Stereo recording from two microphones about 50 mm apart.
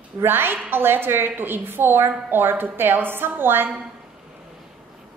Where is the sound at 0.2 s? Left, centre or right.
Right.